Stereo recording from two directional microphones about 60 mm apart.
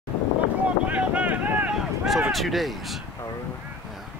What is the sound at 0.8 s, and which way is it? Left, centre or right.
Boat, right.